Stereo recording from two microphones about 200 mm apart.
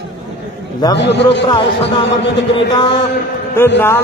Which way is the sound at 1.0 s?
60° left (ahead or behind).